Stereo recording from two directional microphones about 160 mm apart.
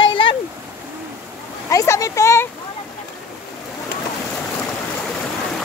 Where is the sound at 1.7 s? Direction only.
20° left (ahead or behind).